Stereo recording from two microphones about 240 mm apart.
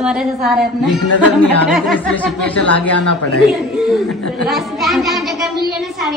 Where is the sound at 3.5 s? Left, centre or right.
Centre.